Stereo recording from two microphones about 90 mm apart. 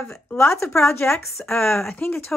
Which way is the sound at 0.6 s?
30° left (ahead or behind).